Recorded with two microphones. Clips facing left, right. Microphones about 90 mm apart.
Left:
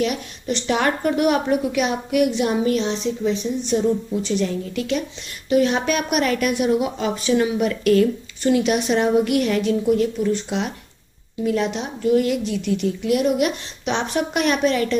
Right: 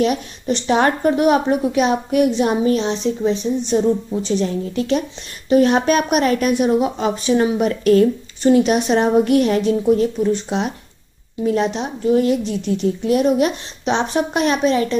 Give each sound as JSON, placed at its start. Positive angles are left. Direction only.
{"t": 0.0, "sound": "a woman's voice", "side_deg": -35}